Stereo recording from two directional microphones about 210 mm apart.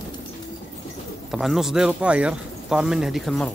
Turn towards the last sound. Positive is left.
turn(degrees=0)  # may be behind; listen again after turning